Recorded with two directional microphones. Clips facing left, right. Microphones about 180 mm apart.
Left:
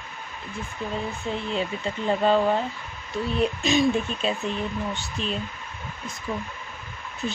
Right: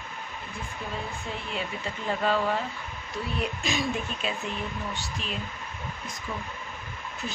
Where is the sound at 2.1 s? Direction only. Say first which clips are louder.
Left 5 dB; 25° left (ahead or behind).